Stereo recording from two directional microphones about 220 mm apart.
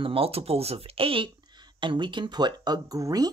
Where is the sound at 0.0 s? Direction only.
25° right (ahead or behind).